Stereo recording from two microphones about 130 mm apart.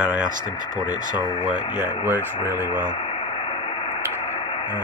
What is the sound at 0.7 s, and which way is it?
Speech, 30° left (ahead or behind).